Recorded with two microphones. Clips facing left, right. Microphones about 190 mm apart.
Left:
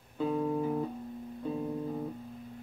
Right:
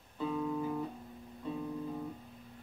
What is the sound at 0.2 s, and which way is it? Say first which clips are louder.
Music: left 4 dB; 45° left (ahead or behind).